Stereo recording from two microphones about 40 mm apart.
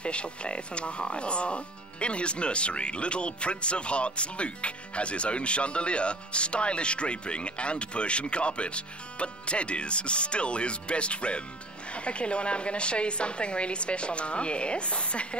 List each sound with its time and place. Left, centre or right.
0.0 s speech: left